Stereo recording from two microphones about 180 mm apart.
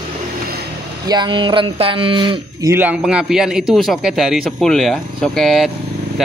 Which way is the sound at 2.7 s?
10° right (ahead or behind).